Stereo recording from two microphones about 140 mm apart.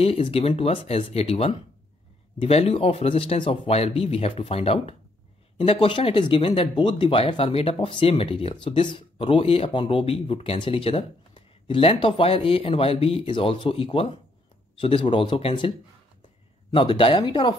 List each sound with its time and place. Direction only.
0.0 s speech: 45° left (ahead or behind)
16.7 s speech: 35° left (ahead or behind)